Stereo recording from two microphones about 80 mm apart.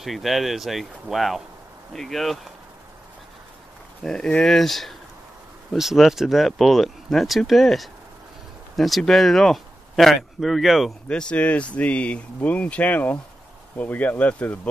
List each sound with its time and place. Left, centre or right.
0.0 s speech: centre
4.0 s speech: centre
11.1 s speech: centre